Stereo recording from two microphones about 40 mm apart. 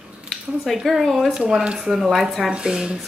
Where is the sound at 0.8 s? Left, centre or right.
Centre.